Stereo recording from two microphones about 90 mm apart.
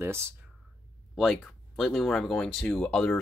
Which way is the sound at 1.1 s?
Centre (ahead or behind).